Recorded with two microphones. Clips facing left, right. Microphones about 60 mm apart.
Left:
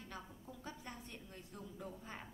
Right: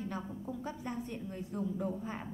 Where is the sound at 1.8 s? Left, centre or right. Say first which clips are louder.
Right 12 dB; right.